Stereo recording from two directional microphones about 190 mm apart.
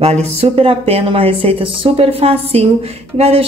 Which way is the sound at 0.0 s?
35° right (ahead or behind).